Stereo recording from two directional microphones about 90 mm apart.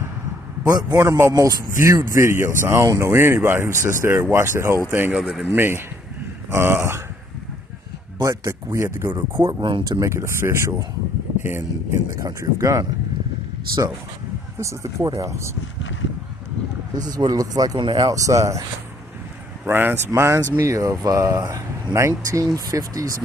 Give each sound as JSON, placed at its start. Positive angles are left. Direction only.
{"t": 0.7, "sound": "speech", "side_deg": -45}
{"t": 0.9, "sound": "speech", "side_deg": -30}
{"t": 5.1, "sound": "speech", "side_deg": -10}
{"t": 5.5, "sound": "speech", "side_deg": -25}
{"t": 8.2, "sound": "speech", "side_deg": -35}
{"t": 9.1, "sound": "speech", "side_deg": -55}
{"t": 9.8, "sound": "speech", "side_deg": -40}
{"t": 12.2, "sound": "speech", "side_deg": -40}
{"t": 14.6, "sound": "speech", "side_deg": -35}
{"t": 16.9, "sound": "speech", "side_deg": -45}
{"t": 19.6, "sound": "speech", "side_deg": -25}